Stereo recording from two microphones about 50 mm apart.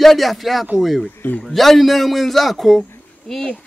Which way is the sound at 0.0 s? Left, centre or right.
Centre.